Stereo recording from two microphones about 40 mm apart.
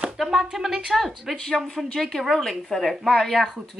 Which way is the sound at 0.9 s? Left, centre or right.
Centre.